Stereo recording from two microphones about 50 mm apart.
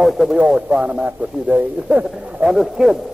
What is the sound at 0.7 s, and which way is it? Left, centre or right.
Speech, right.